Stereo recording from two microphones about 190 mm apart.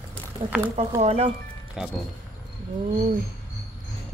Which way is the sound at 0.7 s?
35° right (ahead or behind).